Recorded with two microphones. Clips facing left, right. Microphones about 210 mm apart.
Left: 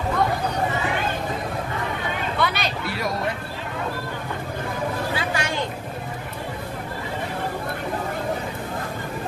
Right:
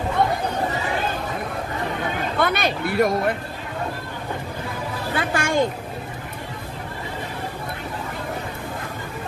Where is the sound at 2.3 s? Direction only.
50° right (ahead or behind).